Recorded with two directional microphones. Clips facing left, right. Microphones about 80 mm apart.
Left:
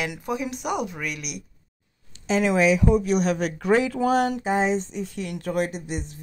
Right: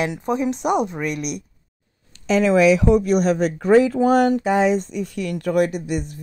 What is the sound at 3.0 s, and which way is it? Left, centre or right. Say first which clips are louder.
Speech: right 5 dB; right.